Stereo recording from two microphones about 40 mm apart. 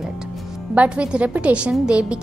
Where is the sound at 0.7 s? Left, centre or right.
Right.